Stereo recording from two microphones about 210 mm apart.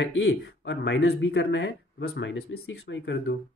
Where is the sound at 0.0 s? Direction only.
55° left (ahead or behind).